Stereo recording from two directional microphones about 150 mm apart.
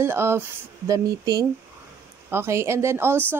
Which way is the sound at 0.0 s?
15° right (ahead or behind).